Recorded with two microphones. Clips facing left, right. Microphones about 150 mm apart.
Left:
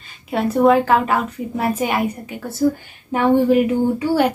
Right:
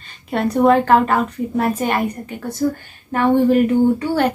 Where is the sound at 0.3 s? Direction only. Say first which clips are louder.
Even; 5° left (ahead or behind).